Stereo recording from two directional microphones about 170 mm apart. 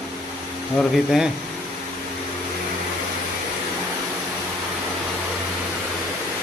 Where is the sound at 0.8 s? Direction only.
Centre (ahead or behind).